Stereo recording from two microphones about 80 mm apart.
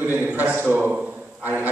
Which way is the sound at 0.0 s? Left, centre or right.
Right.